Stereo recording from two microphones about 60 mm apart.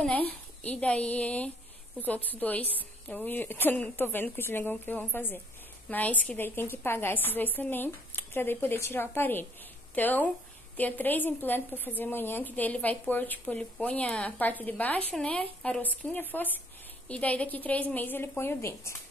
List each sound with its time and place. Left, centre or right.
0.2 s a woman's voice: left